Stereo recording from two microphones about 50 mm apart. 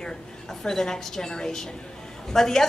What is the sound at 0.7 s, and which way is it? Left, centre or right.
A woman's voice, centre.